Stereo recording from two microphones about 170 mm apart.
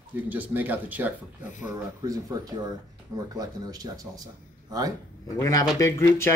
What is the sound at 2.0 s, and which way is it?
Speech, 20° right (ahead or behind).